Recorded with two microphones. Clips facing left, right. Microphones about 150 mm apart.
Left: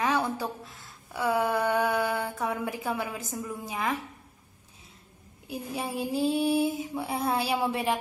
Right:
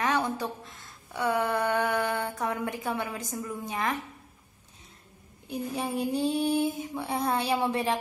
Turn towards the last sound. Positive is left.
turn(degrees=0)  # may be behind; listen again after turning